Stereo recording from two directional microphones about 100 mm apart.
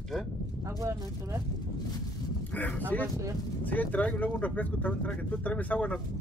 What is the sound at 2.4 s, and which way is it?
Speech, 15° left (ahead or behind).